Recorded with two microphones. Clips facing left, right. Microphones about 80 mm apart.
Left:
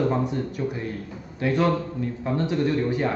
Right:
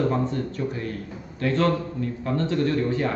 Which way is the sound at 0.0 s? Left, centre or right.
Centre.